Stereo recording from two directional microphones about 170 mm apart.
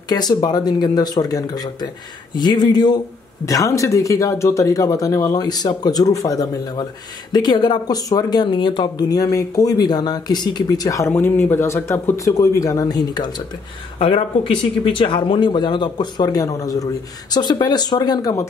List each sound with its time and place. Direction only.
0.1 s speech: 25° left (ahead or behind)